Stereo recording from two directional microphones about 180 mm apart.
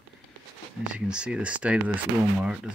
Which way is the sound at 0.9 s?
5° right (ahead or behind).